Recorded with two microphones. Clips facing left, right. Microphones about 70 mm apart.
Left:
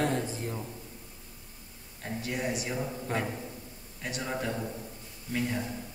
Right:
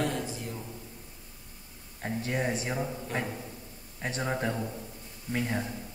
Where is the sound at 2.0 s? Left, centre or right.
Right.